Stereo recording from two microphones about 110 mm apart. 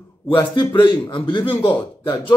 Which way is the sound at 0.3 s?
45° left (ahead or behind).